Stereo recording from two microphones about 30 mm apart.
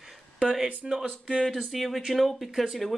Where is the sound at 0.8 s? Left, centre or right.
Centre.